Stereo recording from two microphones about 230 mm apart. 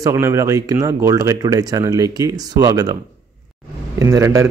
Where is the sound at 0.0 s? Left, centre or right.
Centre.